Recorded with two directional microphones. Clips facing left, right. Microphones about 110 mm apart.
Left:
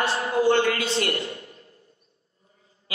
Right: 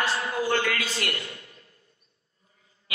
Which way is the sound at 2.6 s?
30° left (ahead or behind).